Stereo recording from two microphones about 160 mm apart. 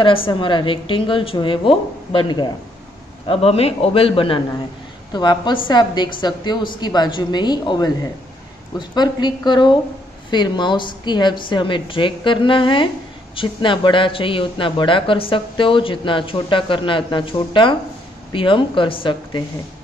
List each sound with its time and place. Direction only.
0.0 s speech: 35° left (ahead or behind)
3.3 s a woman's voice: 40° left (ahead or behind)